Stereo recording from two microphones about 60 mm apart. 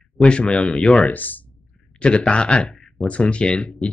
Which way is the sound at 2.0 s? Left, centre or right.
Centre.